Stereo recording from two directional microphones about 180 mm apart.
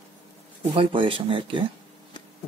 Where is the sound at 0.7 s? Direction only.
30° right (ahead or behind).